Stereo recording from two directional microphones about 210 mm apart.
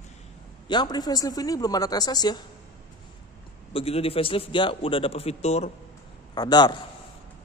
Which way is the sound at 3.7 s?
25° left (ahead or behind).